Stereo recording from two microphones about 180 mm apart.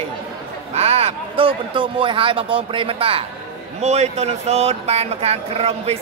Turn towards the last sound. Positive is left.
turn(degrees=-35)  # may be behind; listen again after turning